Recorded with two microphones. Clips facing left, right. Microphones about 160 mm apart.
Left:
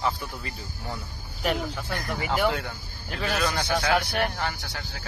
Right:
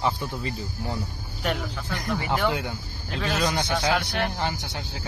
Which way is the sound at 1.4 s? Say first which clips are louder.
Left 1 dB; centre (ahead or behind).